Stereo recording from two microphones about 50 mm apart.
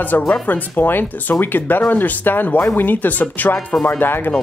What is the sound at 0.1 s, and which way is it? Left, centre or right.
Speech, left.